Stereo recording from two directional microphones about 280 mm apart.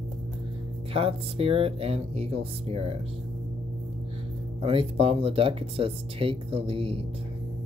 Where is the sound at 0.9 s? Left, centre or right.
Centre.